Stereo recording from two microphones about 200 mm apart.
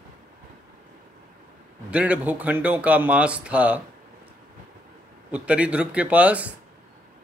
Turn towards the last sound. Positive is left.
turn(degrees=-5)  # may be behind; listen again after turning